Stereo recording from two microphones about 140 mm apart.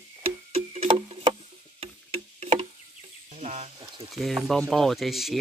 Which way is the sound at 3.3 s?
50° right (ahead or behind).